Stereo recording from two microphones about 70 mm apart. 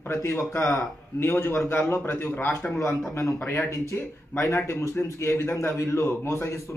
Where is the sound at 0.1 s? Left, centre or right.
Left.